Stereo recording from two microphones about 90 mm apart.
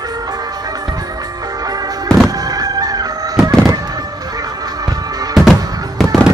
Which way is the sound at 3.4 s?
45° right (ahead or behind).